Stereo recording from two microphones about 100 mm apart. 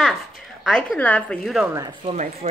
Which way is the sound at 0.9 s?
15° left (ahead or behind).